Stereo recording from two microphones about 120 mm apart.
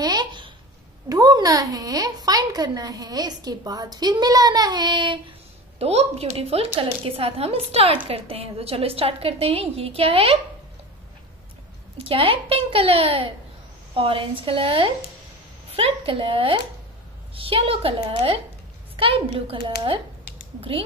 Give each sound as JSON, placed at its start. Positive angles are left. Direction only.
{"t": 0.0, "sound": "babbling", "side_deg": -35}
{"t": 1.0, "sound": "a woman's voice", "side_deg": -30}
{"t": 5.8, "sound": "a woman's voice", "side_deg": -60}
{"t": 12.0, "sound": "a woman's voice", "side_deg": -50}